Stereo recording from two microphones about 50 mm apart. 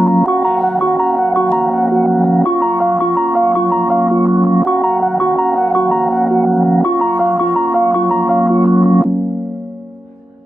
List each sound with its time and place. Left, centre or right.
0.4 s music: centre
3.5 s music: centre
5.2 s music: centre
6.4 s music: centre
8.1 s music: centre
8.7 s organ: centre